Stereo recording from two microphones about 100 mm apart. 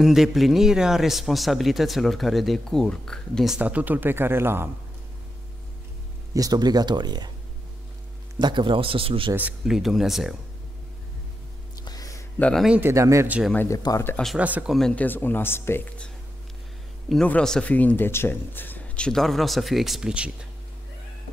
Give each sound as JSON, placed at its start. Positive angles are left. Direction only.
{"t": 0.0, "sound": "speech", "side_deg": -5}
{"t": 3.5, "sound": "speech", "side_deg": -15}
{"t": 6.3, "sound": "speech", "side_deg": -40}
{"t": 8.4, "sound": "speech", "side_deg": -50}
{"t": 9.7, "sound": "speech", "side_deg": -5}
{"t": 11.7, "sound": "a sound", "side_deg": 40}
{"t": 12.8, "sound": "speech", "side_deg": -30}
{"t": 13.7, "sound": "speech", "side_deg": 30}
{"t": 14.3, "sound": "speech", "side_deg": -15}
{"t": 14.7, "sound": "speech", "side_deg": 5}
{"t": 15.0, "sound": "speech", "side_deg": 20}
{"t": 17.3, "sound": "speech", "side_deg": 10}
{"t": 19.0, "sound": "speech", "side_deg": 5}